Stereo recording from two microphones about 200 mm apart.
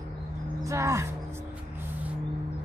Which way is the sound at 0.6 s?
15° right (ahead or behind).